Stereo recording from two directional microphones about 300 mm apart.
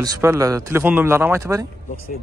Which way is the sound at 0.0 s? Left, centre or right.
Centre.